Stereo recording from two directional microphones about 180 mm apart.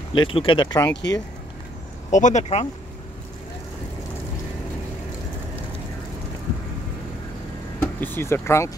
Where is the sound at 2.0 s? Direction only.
40° left (ahead or behind).